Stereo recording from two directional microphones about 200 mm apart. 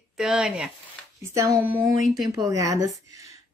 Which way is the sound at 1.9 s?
45° left (ahead or behind).